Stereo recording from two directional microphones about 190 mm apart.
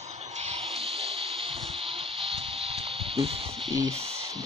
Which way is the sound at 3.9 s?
30° right (ahead or behind).